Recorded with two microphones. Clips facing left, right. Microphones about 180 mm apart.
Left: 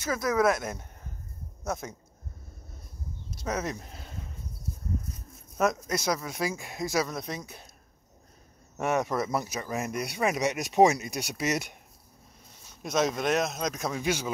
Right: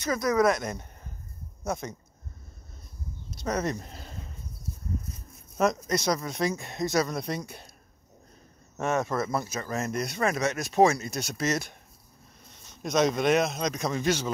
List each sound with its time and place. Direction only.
0.0 s speech: 5° left (ahead or behind)
3.4 s speech: 5° left (ahead or behind)
5.6 s speech: 5° left (ahead or behind)
8.7 s speech: 15° left (ahead or behind)
12.8 s speech: 5° left (ahead or behind)